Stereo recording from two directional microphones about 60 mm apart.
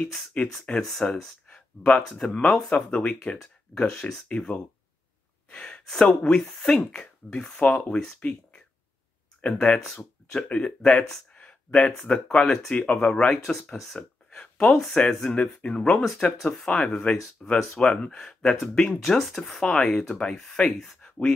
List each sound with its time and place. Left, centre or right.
0.3 s speech: left
0.7 s speech: centre
11.3 s a sound: centre
12.3 s speech: centre
13.5 s speech: centre